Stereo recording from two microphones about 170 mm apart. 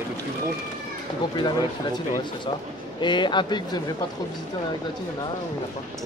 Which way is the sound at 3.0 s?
25° left (ahead or behind).